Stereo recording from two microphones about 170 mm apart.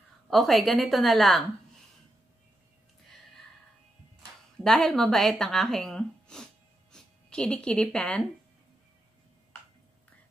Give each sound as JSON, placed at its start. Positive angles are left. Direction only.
{"t": 0.3, "sound": "a woman's voice", "side_deg": 0}
{"t": 4.6, "sound": "speech", "side_deg": 0}